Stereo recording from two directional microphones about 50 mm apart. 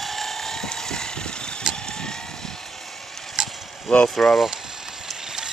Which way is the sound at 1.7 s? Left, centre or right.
Centre.